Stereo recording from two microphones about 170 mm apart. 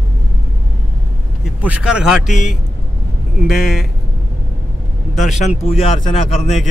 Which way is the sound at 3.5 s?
Centre (ahead or behind).